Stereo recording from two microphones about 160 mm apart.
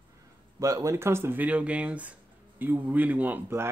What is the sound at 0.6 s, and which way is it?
Speech, 20° right (ahead or behind).